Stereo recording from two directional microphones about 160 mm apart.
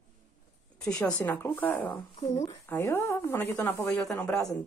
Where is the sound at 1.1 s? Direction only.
10° left (ahead or behind).